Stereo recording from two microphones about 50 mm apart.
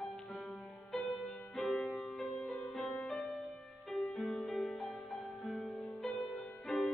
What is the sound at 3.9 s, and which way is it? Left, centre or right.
Music, centre.